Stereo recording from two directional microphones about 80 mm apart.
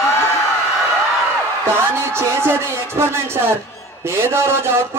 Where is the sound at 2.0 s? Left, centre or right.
Right.